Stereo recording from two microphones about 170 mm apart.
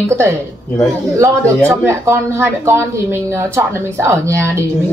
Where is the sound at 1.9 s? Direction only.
15° right (ahead or behind).